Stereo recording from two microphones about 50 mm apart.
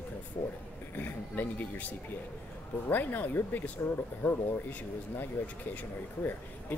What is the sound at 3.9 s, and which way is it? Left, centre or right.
Speech, left.